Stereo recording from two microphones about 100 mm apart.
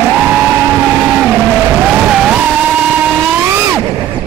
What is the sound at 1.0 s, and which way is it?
Vehicle, 10° right (ahead or behind).